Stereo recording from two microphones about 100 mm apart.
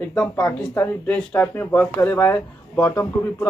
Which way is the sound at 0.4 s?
15° left (ahead or behind).